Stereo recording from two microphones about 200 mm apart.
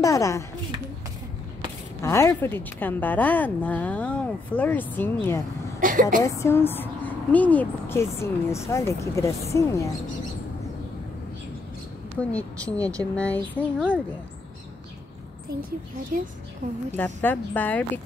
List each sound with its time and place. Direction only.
0.0 s speech: 15° left (ahead or behind)
2.0 s speech: 15° left (ahead or behind)
5.8 s a woman's voice: 40° right (ahead or behind)
6.2 s speech: 15° left (ahead or behind)
12.2 s speech: 5° left (ahead or behind)
16.1 s a woman's voice: 40° right (ahead or behind)
16.9 s speech: 10° left (ahead or behind)